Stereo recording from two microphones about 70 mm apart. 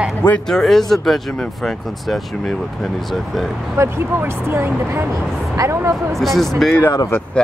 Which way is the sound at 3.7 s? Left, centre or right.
Right.